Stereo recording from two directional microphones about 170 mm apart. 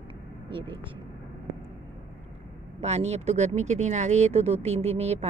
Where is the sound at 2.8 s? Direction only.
40° right (ahead or behind).